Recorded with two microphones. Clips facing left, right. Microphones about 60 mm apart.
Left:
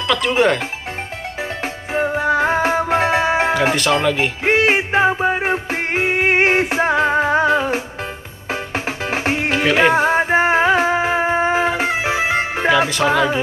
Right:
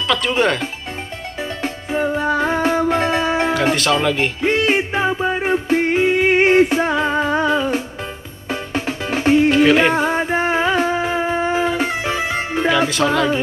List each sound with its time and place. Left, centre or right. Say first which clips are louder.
0.1 s speech: left 2 dB; centre
1.4 s music: right 1 dB; left
3.7 s speech: even; centre
4.4 s music: left 2 dB; left
5.9 s music: even; left
9.5 s music: right 2 dB; centre
9.9 s music: left 3 dB; centre
12.6 s music: left 1 dB; centre